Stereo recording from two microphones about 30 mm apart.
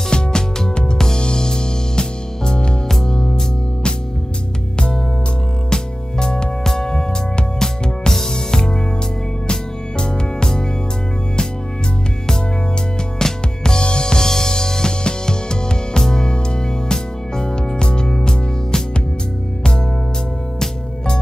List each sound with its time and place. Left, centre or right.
0.1 s music: left
0.9 s music: centre
5.7 s music: left
8.1 s music: centre
13.2 s music: left
16.0 s music: left